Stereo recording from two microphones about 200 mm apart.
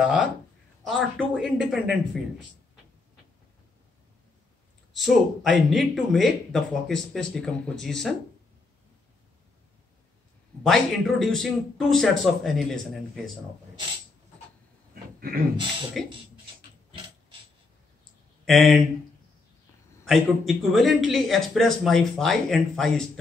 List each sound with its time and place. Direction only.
0.0 s speech: 5° right (ahead or behind)
4.9 s speech: centre (ahead or behind)
10.6 s speech: centre (ahead or behind)
15.1 s a sound: 45° right (ahead or behind)
16.0 s speech: centre (ahead or behind)
18.4 s speech: centre (ahead or behind)
20.1 s speech: centre (ahead or behind)